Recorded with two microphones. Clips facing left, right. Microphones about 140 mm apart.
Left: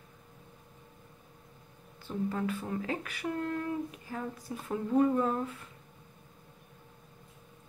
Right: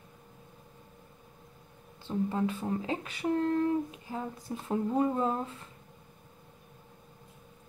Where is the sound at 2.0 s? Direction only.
25° right (ahead or behind).